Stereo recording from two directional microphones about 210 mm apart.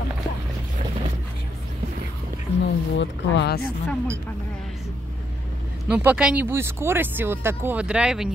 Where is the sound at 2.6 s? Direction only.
60° left (ahead or behind).